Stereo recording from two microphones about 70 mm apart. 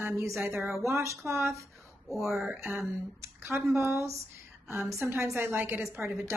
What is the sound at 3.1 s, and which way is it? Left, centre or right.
A woman's voice, right.